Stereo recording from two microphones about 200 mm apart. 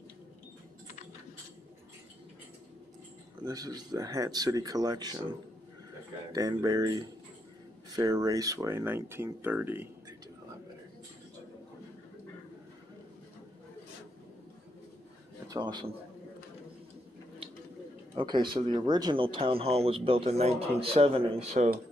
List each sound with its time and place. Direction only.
3.4 s speech: 20° right (ahead or behind)
6.3 s speech: 15° right (ahead or behind)
15.4 s a sound: 20° right (ahead or behind)
18.1 s speech: 25° right (ahead or behind)